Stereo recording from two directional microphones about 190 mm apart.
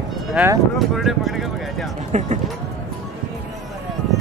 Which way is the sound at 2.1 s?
40° right (ahead or behind).